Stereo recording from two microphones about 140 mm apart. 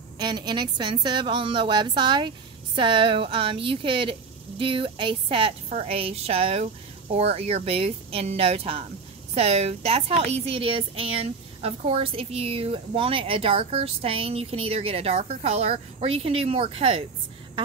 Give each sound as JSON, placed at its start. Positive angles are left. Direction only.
{"t": 0.2, "sound": "a woman's voice", "side_deg": -30}